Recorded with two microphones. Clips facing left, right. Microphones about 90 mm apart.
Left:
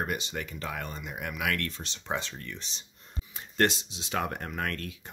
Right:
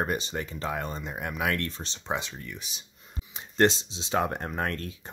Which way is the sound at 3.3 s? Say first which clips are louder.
Right 4 dB; 25° right (ahead or behind).